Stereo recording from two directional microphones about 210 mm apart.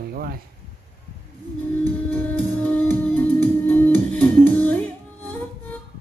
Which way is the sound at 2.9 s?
10° left (ahead or behind).